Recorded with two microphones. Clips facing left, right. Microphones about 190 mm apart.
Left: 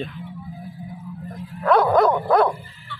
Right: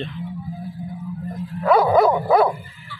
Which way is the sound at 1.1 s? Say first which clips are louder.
Right 5 dB; 5° right (ahead or behind).